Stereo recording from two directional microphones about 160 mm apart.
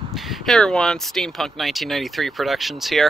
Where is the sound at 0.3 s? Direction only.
Centre (ahead or behind).